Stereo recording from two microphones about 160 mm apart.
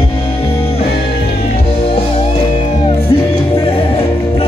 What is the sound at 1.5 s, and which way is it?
Music, 35° left (ahead or behind).